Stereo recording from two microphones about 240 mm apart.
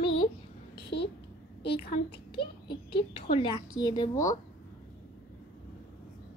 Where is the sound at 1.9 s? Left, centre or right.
Left.